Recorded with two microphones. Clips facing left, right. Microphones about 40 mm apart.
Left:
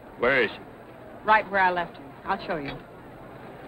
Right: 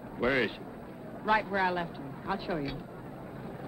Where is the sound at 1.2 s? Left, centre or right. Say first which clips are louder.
Left 7 dB; left.